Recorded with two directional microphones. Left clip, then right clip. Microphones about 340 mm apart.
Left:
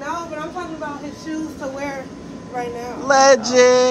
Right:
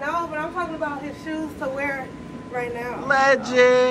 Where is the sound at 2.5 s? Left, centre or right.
Centre.